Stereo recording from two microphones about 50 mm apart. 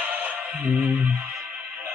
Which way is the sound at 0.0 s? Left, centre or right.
Right.